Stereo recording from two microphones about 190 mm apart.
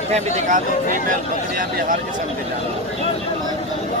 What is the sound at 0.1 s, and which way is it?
Speech, 35° right (ahead or behind).